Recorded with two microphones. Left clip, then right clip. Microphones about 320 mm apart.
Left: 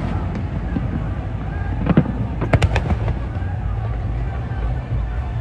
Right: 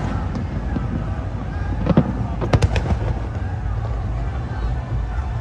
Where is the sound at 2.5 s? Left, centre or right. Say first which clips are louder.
Left 2 dB; centre.